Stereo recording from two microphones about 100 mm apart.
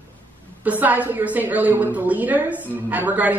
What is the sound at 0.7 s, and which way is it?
A woman's voice, 15° right (ahead or behind).